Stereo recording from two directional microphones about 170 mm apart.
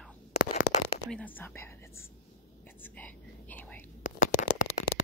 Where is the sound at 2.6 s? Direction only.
10° left (ahead or behind).